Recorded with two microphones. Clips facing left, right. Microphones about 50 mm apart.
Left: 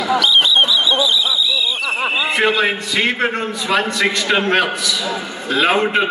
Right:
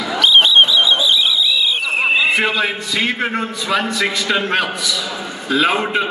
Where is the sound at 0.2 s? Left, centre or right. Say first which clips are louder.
Right 7 dB; right.